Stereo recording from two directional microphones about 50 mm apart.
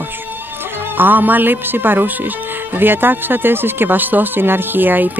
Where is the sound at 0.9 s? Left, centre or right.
Right.